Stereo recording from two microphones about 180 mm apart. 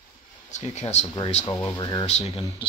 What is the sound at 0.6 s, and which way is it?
Speech, 40° left (ahead or behind).